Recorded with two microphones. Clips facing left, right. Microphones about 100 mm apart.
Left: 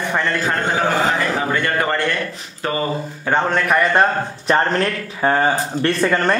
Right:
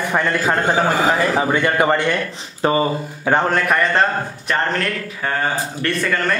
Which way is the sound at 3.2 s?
10° right (ahead or behind).